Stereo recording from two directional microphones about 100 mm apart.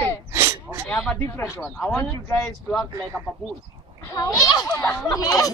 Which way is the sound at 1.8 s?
10° left (ahead or behind).